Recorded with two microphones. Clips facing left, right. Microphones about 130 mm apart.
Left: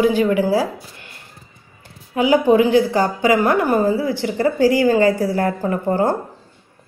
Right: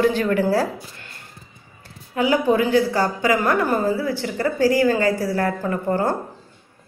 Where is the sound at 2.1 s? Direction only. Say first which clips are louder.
Left 4 dB; 15° left (ahead or behind).